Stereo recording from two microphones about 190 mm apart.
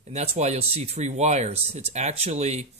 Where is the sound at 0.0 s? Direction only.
35° right (ahead or behind).